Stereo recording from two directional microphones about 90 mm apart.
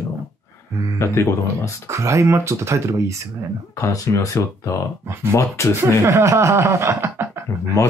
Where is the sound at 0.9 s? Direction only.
30° left (ahead or behind).